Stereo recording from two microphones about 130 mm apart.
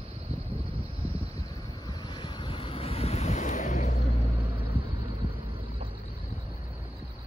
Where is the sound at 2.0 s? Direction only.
35° left (ahead or behind); by 3.9 s 70° left (ahead or behind).